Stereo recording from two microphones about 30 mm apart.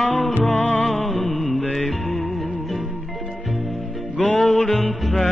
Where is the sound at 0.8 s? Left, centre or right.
Centre.